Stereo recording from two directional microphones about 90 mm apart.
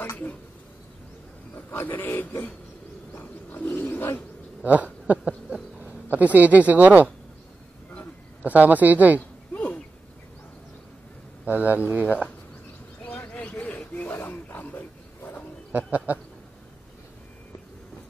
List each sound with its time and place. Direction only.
0.1 s speech: 20° left (ahead or behind)
1.5 s a man's voice: 20° left (ahead or behind)
3.2 s roaring cats: 20° left (ahead or behind)
5.0 s speech: 15° right (ahead or behind)
8.4 s speech: 20° right (ahead or behind)
9.5 s a sound: 15° left (ahead or behind)
11.4 s speech: 20° right (ahead or behind)
13.0 s wild animals: 15° left (ahead or behind)
15.7 s speech: 20° right (ahead or behind)